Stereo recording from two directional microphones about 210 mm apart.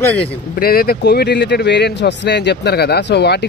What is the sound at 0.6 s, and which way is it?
Speech, 45° left (ahead or behind).